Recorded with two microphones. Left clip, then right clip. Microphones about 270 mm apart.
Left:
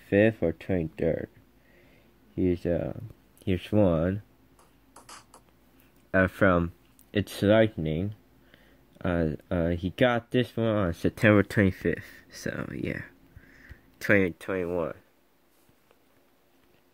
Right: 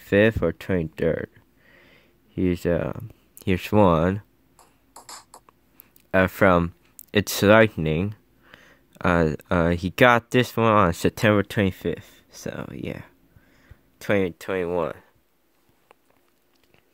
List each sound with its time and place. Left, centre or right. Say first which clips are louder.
0.1 s speech: right 4 dB; right
2.3 s a sound: right 4 dB; right
6.0 s speech: right 5 dB; centre